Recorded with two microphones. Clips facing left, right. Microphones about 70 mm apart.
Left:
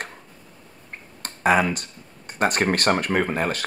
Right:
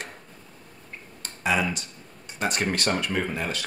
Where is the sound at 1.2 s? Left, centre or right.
Left.